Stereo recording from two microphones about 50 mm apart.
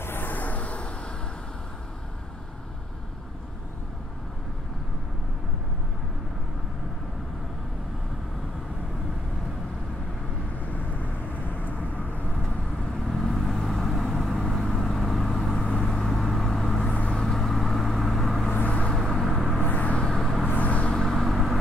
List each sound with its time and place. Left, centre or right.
0.0 s a sound: left
10.7 s vehicle: left
13.1 s vehicle: centre
18.5 s vehicle: left
18.9 s vehicle: centre
19.6 s vehicle: left
21.0 s vehicle: centre